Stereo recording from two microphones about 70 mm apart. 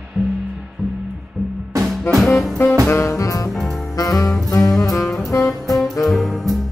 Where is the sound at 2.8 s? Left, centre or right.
Left.